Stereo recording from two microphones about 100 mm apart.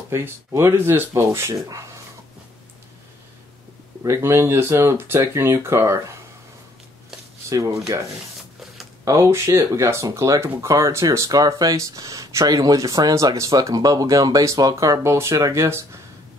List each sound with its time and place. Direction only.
0.1 s speech: 25° right (ahead or behind)
4.0 s speech: 30° right (ahead or behind)
7.4 s speech: 30° right (ahead or behind)
9.0 s speech: 30° right (ahead or behind)